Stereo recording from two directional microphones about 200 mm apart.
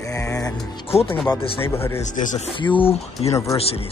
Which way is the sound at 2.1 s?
40° left (ahead or behind).